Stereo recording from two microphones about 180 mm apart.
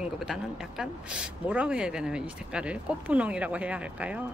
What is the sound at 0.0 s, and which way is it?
Speech, 5° right (ahead or behind).